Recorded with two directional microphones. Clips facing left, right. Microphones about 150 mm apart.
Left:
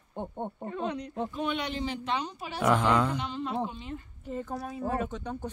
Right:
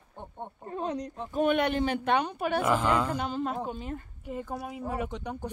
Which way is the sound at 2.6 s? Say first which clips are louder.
Left 4 dB; 5° right (ahead or behind).